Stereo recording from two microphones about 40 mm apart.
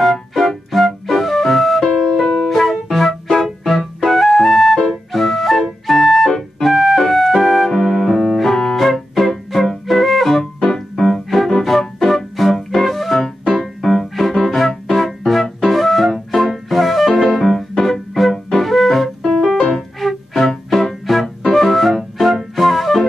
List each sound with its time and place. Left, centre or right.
0.0 s music: centre
2.2 s music: centre
2.5 s music: centre
5.1 s flute: centre
6.6 s music: centre
10.4 s organ: centre
11.0 s music: centre